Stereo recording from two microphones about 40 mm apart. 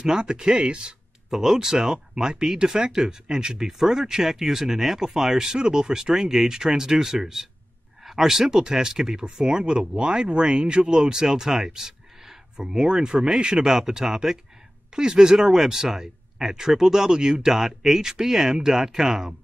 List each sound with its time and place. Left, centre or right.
0.0 s speech: centre
1.3 s speech: centre
15.3 s speech: centre